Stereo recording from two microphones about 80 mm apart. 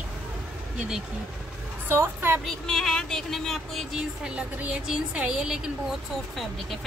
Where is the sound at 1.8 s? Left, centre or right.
Right.